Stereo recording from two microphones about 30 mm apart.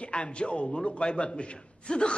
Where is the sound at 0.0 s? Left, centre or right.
Left.